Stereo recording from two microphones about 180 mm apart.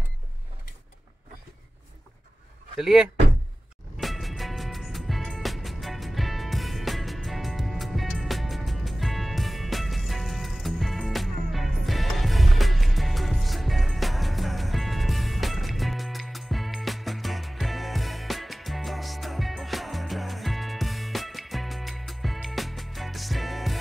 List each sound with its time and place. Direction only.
2.8 s speech: 5° right (ahead or behind)
4.0 s music: centre (ahead or behind)